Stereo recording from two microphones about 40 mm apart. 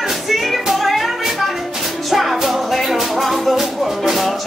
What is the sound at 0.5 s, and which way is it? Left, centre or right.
Music, centre.